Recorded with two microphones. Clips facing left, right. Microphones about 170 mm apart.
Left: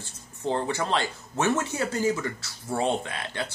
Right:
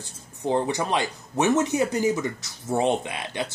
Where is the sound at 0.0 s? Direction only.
15° right (ahead or behind).